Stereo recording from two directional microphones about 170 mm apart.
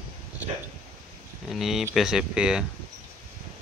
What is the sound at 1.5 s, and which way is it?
Speech, centre (ahead or behind).